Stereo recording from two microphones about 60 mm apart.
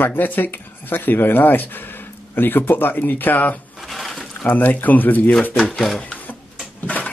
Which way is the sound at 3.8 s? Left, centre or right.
Centre.